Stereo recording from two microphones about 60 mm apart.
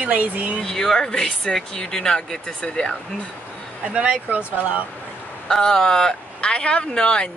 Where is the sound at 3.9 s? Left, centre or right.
Centre.